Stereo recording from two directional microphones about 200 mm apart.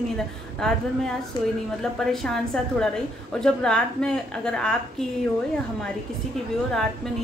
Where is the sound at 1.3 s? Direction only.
20° left (ahead or behind).